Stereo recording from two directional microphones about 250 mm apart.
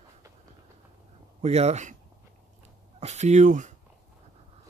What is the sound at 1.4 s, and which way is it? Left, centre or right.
Speech, right.